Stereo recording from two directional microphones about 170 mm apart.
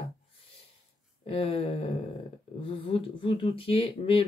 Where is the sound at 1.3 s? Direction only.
35° left (ahead or behind).